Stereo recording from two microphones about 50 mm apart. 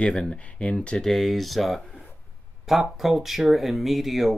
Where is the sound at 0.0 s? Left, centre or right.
Centre.